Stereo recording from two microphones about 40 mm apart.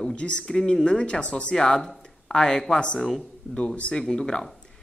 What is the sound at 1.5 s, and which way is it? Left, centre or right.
A man's voice, centre.